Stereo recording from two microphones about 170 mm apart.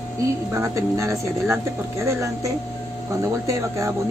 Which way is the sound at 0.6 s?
15° right (ahead or behind).